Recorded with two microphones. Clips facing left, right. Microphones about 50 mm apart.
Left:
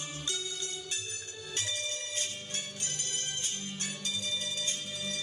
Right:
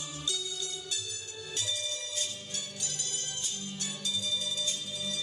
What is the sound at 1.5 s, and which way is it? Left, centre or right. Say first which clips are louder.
Music: even; left.